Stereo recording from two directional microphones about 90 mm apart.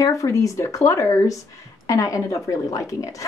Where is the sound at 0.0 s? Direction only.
40° left (ahead or behind).